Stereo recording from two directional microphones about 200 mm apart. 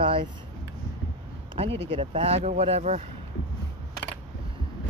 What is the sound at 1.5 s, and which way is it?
Speech, 30° right (ahead or behind).